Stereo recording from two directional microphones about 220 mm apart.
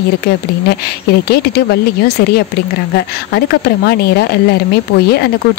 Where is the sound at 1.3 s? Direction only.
45° left (ahead or behind).